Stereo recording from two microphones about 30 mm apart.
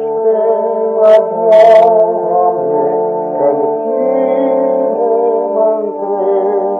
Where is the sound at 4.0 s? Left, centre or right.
Centre.